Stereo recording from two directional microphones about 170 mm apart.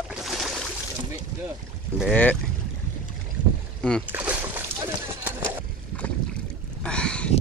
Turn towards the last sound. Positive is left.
turn(degrees=5)  # may be behind; listen again after turning